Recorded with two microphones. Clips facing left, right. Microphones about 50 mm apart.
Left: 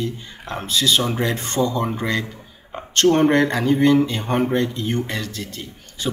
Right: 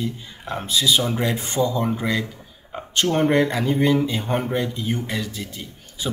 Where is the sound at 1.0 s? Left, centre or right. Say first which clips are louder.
Left 1 dB; left.